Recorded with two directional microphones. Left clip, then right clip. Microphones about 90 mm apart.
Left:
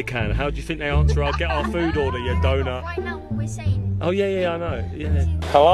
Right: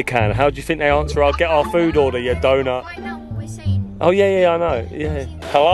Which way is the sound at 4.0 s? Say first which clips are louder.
Right 8 dB; 35° right (ahead or behind).